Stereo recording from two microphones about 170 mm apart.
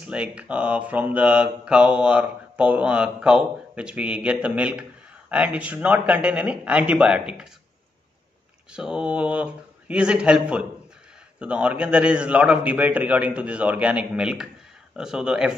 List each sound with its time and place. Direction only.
0.0 s speech: 5° right (ahead or behind)
8.7 s speech: 5° right (ahead or behind)